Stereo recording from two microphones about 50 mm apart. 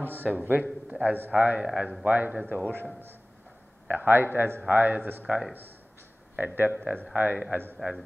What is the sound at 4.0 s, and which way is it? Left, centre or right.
Speech, right.